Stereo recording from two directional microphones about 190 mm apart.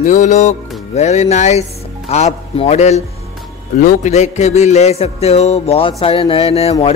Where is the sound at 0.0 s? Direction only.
40° left (ahead or behind).